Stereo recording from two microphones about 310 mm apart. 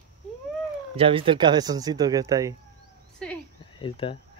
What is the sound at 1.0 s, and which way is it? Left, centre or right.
Speech, centre.